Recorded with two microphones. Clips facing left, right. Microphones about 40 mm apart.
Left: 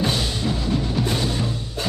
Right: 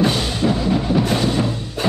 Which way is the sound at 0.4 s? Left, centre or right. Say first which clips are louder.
Right 5 dB; right.